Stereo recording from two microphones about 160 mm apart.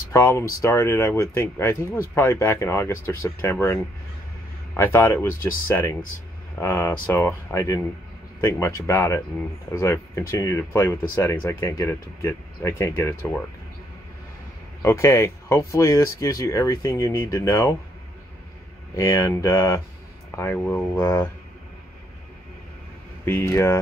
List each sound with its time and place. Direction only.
0.1 s speech: 15° left (ahead or behind)
14.8 s speech: 15° left (ahead or behind)
18.9 s speech: 20° left (ahead or behind)
23.2 s speech: 15° left (ahead or behind)